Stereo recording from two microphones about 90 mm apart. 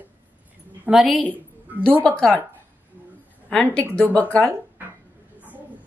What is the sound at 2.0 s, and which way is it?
Speech, 10° left (ahead or behind).